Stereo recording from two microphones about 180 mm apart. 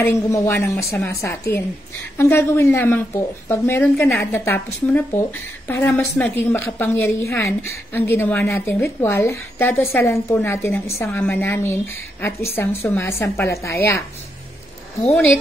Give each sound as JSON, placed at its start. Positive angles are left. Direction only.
{"t": 0.0, "sound": "a woman's voice", "side_deg": 15}